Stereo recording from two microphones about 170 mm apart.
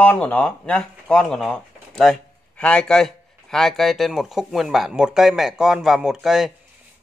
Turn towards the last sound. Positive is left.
turn(degrees=0)  # may be behind; listen again after turning